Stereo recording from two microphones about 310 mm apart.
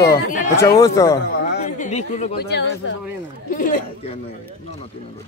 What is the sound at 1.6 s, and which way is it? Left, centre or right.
Speech, left.